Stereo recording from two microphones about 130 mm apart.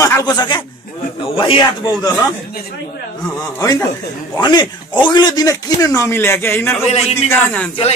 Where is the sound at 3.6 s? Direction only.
25° left (ahead or behind).